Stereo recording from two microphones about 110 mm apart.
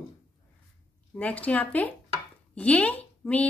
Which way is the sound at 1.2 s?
10° left (ahead or behind).